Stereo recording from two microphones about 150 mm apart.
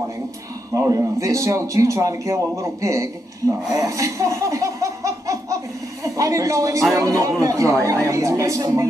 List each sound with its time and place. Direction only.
0.7 s speech: 20° right (ahead or behind)
3.7 s laughter: 20° right (ahead or behind)
6.0 s speech: 20° right (ahead or behind)